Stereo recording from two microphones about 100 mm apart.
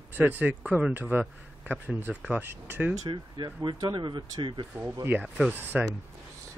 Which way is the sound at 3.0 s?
45° right (ahead or behind).